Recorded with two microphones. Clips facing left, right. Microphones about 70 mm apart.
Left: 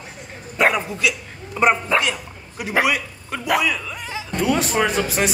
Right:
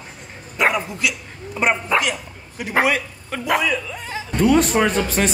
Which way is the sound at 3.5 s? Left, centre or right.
Right.